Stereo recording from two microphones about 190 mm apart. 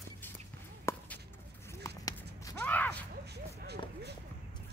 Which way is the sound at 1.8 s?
20° left (ahead or behind).